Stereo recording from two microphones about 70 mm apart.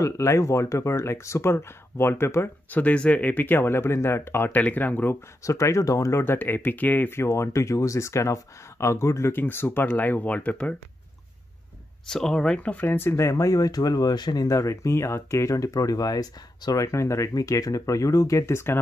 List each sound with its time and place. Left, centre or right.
0.0 s speech: left
2.7 s speech: centre; by 4.5 s left
4.5 s speech: left
5.4 s speech: left
6.2 s speech: left
7.2 s speech: left
12.1 s speech: centre
12.5 s speech: left
13.1 s speech: left
16.8 s speech: left
17.3 s speech: left